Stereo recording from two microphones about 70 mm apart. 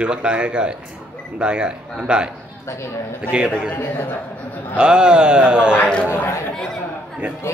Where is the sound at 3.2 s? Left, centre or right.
Centre.